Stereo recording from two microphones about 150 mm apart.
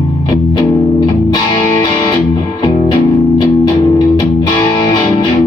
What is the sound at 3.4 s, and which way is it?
Music, 25° left (ahead or behind).